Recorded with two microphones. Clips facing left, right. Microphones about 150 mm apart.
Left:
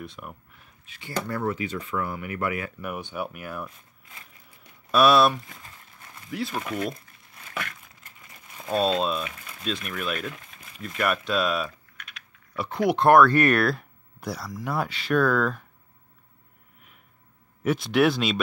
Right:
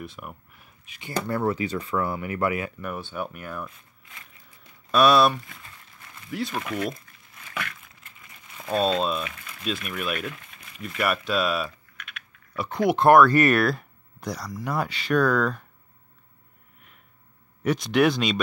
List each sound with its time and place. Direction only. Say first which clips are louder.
0.0 s speech: right 1 dB; 5° right (ahead or behind)
1.2 s speech: right 4 dB; 30° right (ahead or behind)
2.8 s speech: even; 15° left (ahead or behind)
4.9 s speech: even; centre (ahead or behind)
6.6 s speech: right 1 dB; 30° left (ahead or behind)
7.3 s a sound: even; 35° left (ahead or behind)
8.6 s speech: even; centre (ahead or behind)
9.2 s a sound: even; 30° left (ahead or behind)
9.7 s speech: right 1 dB; 5° right (ahead or behind)
17.6 s speech: even; 5° left (ahead or behind)